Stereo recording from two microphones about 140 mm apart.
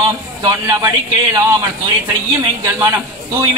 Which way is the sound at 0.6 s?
25° right (ahead or behind).